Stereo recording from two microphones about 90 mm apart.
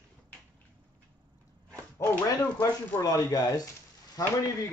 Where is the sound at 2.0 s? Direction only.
40° left (ahead or behind).